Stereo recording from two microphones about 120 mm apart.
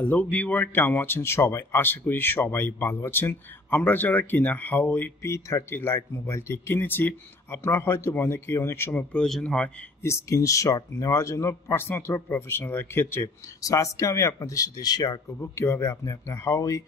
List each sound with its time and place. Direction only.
0.0 s speech: 10° left (ahead or behind)
9.1 s speech: 5° left (ahead or behind)
10.0 s speech: 25° left (ahead or behind)